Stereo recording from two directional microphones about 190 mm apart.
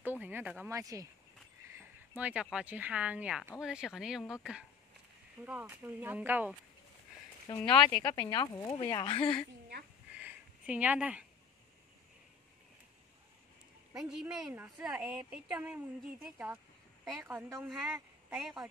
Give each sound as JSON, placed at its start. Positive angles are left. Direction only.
{"t": 0.0, "sound": "speech", "side_deg": -10}
{"t": 1.8, "sound": "a sound", "side_deg": -10}
{"t": 2.5, "sound": "a woman's voice", "side_deg": -5}
{"t": 7.4, "sound": "speech", "side_deg": 25}
{"t": 10.1, "sound": "a sound", "side_deg": -5}
{"t": 14.2, "sound": "a woman's voice", "side_deg": -10}